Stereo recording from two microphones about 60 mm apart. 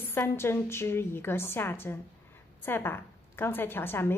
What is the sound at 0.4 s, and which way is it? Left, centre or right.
Speech, left.